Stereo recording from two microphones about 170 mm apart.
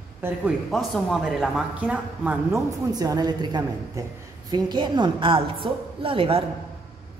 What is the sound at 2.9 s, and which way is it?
A woman's voice, 20° right (ahead or behind).